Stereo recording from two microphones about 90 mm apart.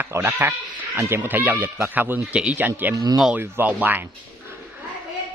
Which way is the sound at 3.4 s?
20° right (ahead or behind).